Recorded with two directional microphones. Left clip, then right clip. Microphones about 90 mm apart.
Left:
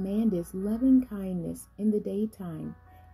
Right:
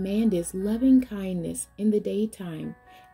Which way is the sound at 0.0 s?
15° right (ahead or behind).